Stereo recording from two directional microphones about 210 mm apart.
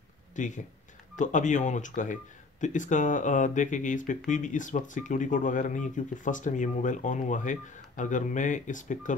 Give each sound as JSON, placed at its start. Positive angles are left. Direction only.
{"t": 0.4, "sound": "speech", "side_deg": 35}